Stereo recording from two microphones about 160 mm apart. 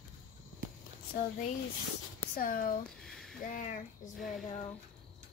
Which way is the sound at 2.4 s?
60° left (ahead or behind).